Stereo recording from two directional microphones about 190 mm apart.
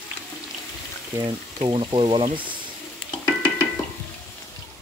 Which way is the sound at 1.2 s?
20° right (ahead or behind).